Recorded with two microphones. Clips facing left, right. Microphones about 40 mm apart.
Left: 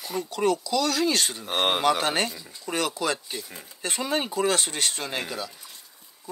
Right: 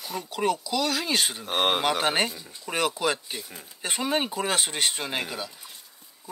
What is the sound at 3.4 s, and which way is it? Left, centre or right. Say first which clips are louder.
Stir: left 1 dB; centre.